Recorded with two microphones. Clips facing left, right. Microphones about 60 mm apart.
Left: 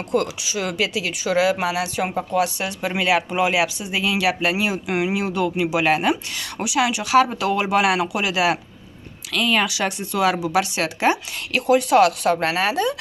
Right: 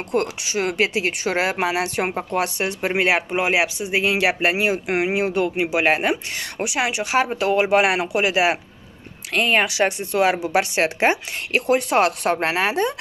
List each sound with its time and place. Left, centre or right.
0.1 s speech: right